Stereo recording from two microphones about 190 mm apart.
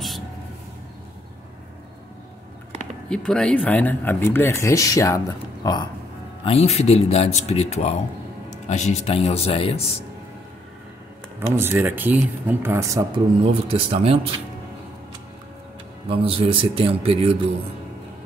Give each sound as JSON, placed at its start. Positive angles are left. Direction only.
{"t": 3.1, "sound": "speech", "side_deg": 5}
{"t": 6.4, "sound": "speech", "side_deg": 30}
{"t": 11.3, "sound": "speech", "side_deg": -10}
{"t": 13.4, "sound": "speech", "side_deg": -30}
{"t": 16.1, "sound": "speech", "side_deg": -30}